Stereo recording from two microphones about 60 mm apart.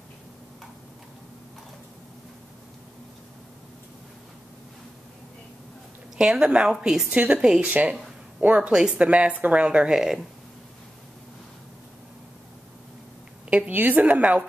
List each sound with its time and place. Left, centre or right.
6.1 s a woman's voice: centre
7.1 s a woman's voice: right
7.3 s a woman's voice: centre
7.6 s a woman's voice: right
13.5 s a woman's voice: right